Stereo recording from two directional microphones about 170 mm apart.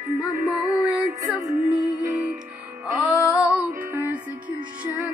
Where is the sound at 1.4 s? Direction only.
20° right (ahead or behind).